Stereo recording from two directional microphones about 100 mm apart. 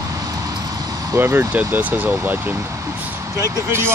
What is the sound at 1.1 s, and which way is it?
Speech, 25° right (ahead or behind).